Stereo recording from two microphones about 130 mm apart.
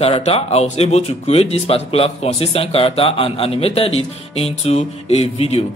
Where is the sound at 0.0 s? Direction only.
50° left (ahead or behind).